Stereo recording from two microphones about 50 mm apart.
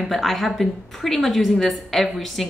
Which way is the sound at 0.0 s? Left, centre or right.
Centre.